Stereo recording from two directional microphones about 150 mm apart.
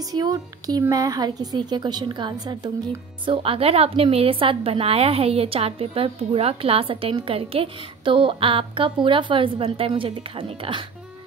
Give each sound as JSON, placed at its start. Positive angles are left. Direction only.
{"t": 0.1, "sound": "a woman's voice", "side_deg": -25}